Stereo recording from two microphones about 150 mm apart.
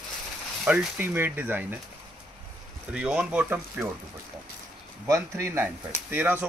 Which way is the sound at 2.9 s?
10° right (ahead or behind).